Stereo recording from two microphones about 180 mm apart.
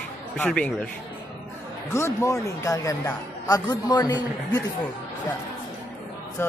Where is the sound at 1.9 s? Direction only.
15° left (ahead or behind).